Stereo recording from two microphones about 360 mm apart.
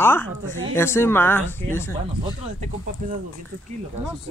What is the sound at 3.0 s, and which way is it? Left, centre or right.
Speech, right.